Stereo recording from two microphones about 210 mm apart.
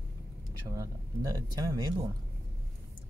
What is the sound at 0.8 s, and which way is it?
Speech, 20° right (ahead or behind).